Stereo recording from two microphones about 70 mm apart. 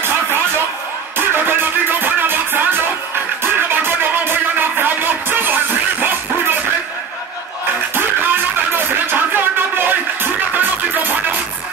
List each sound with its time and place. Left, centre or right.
1.1 s music: right
7.9 s music: right